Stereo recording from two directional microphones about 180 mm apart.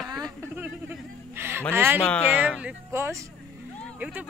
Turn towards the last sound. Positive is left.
turn(degrees=-10)  # may be behind; listen again after turning